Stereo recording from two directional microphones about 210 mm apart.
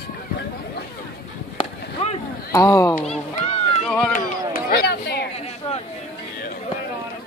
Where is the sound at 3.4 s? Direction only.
30° left (ahead or behind).